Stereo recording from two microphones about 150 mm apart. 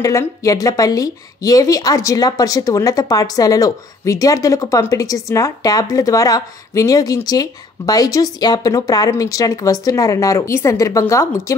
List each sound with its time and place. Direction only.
0.0 s a woman's voice: 20° left (ahead or behind)